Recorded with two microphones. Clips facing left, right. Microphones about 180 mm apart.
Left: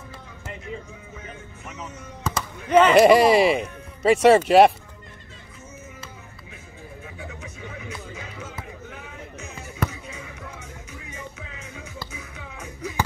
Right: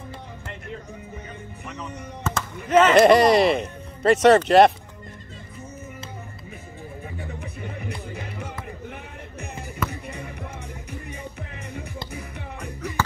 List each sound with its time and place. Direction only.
1.8 s speech: centre (ahead or behind)
7.6 s music: 60° right (ahead or behind)
9.8 s music: 60° right (ahead or behind)